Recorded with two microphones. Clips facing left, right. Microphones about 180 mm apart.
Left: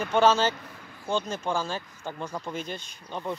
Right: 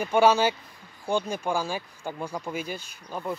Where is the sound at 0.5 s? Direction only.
70° left (ahead or behind).